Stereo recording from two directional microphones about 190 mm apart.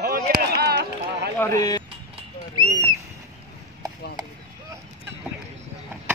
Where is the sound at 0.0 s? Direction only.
55° right (ahead or behind).